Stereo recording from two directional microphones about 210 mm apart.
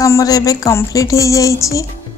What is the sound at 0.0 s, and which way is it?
Speech, 15° left (ahead or behind).